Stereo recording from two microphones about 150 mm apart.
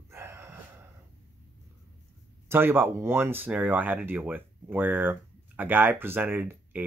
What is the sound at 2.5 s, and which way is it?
Speech, 15° right (ahead or behind).